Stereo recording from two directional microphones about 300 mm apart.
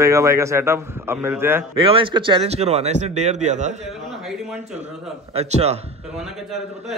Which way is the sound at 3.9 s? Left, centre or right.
Centre.